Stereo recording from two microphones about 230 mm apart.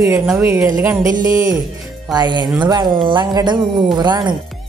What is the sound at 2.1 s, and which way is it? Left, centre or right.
Speech, centre.